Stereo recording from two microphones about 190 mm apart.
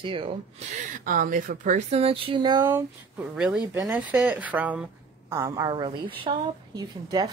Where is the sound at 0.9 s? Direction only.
45° right (ahead or behind); by 3.2 s 15° right (ahead or behind).